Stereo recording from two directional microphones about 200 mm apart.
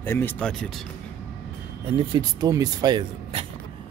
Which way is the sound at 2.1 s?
20° right (ahead or behind).